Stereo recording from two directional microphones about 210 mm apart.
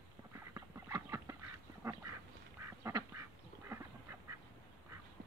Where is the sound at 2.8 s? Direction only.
15° right (ahead or behind).